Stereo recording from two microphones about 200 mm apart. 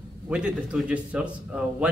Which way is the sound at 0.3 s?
5° right (ahead or behind).